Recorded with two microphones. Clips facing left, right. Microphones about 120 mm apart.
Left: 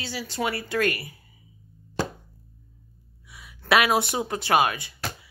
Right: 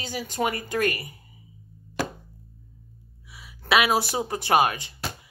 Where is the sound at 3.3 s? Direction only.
30° right (ahead or behind).